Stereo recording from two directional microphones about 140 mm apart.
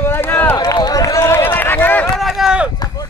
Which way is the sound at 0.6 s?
30° left (ahead or behind).